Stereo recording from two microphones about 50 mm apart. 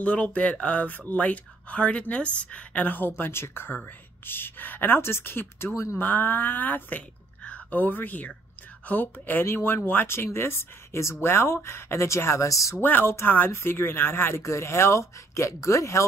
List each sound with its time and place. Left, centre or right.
0.0 s speech: left
11.2 s speech: left
12.1 s speech: left
12.8 s speech: left
13.5 s speech: left
14.4 s speech: left